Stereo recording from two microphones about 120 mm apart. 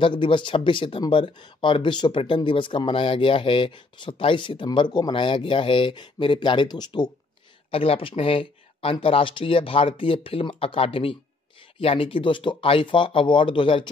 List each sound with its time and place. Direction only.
0.0 s speech: 45° left (ahead or behind)
7.7 s speech: 55° left (ahead or behind)